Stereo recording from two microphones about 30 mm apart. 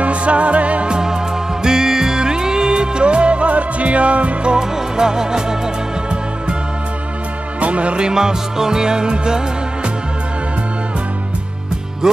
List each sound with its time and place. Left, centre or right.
0.0 s music: right
0.8 s music: right
4.6 s music: right
7.6 s music: right
8.0 s music: right